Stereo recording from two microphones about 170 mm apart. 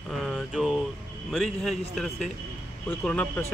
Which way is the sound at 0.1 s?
Centre (ahead or behind).